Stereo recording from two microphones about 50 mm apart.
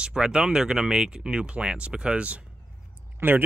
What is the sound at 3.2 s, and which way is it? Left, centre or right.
Speech, right.